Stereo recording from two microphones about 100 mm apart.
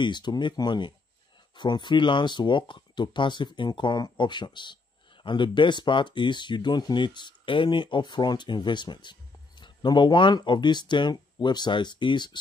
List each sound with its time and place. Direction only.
0.0 s speech: 50° left (ahead or behind)